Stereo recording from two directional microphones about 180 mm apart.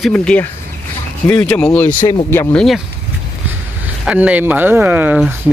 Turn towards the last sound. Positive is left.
turn(degrees=-5)  # may be behind; listen again after turning